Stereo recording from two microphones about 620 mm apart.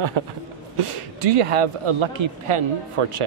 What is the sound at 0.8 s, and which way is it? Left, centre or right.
Speech, right.